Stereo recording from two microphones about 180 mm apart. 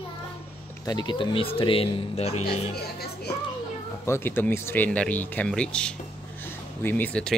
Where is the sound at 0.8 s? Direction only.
25° left (ahead or behind).